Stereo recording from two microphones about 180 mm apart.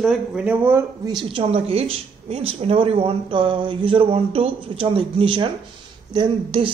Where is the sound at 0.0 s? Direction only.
Centre (ahead or behind).